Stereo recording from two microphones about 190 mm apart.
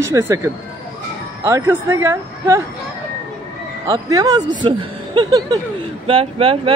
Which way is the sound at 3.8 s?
20° right (ahead or behind).